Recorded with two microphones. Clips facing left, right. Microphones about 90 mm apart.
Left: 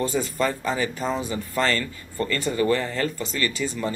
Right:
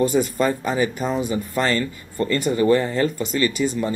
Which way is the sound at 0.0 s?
20° right (ahead or behind).